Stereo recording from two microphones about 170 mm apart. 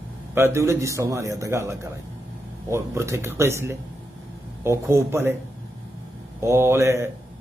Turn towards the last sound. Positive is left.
turn(degrees=-15)  # may be behind; listen again after turning